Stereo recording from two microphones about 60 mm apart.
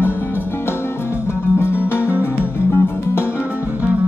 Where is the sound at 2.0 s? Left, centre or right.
Right.